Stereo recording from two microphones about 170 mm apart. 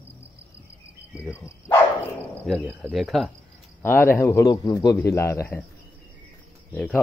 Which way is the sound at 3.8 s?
15° left (ahead or behind).